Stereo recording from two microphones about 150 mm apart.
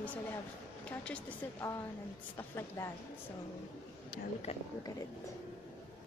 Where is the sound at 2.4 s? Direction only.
20° left (ahead or behind).